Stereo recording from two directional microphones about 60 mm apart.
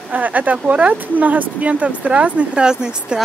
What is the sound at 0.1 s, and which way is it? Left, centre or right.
Speech, right.